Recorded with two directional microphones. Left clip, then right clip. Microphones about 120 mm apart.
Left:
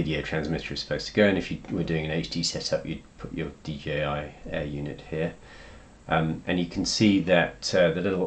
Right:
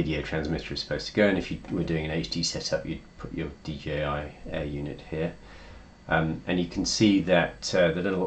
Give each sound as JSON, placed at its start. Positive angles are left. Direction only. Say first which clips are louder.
{"t": 0.0, "sound": "speech", "louder": "left 1 dB", "side_deg": 25}